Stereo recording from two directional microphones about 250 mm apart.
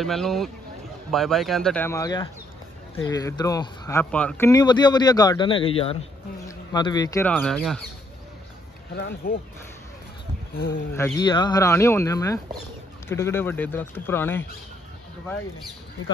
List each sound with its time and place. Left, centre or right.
0.0 s speech: centre
8.9 s speech: left
11.0 s speech: centre